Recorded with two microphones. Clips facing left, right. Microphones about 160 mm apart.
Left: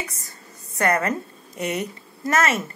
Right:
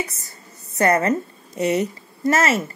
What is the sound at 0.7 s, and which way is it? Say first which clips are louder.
A woman's voice: right 4 dB; 25° right (ahead or behind).